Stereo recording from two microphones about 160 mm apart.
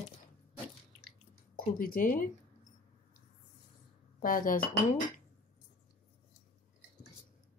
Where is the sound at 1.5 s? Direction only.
60° left (ahead or behind).